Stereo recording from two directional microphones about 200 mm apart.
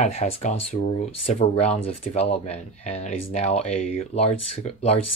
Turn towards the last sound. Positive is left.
turn(degrees=30)  # may be behind; listen again after turning